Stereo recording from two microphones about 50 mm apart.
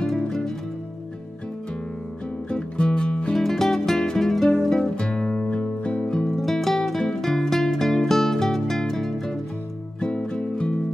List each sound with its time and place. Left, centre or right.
0.0 s music: centre
2.5 s music: centre
3.3 s music: centre
4.7 s music: centre
6.2 s music: centre